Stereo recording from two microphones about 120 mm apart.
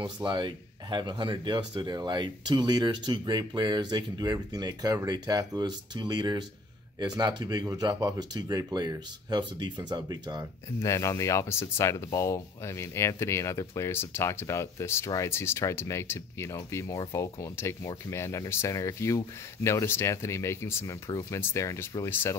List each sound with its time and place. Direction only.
0.0 s speech: 40° right (ahead or behind)
10.8 s speech: 25° left (ahead or behind)